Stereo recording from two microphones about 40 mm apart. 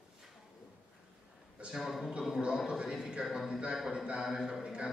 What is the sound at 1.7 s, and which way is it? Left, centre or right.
Speech, centre.